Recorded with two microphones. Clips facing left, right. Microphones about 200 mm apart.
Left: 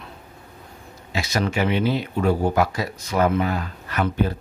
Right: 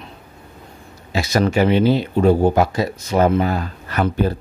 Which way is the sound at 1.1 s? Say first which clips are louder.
Right 6 dB; 40° right (ahead or behind).